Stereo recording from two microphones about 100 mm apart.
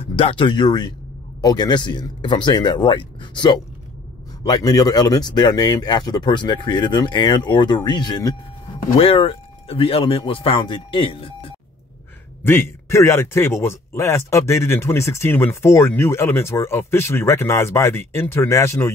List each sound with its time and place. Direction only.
0.0 s speech: 70° left (ahead or behind); by 8.4 s 40° left (ahead or behind)
8.9 s speech: 65° left (ahead or behind)
12.4 s speech: 25° left (ahead or behind)